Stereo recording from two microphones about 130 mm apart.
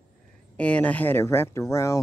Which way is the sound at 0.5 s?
10° left (ahead or behind).